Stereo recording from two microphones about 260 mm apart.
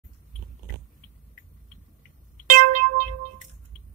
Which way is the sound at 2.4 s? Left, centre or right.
Right.